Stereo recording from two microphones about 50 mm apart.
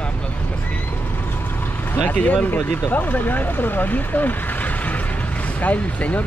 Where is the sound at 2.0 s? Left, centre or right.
Left.